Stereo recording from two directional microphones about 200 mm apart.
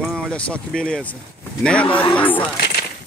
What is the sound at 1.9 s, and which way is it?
Speech, 25° left (ahead or behind).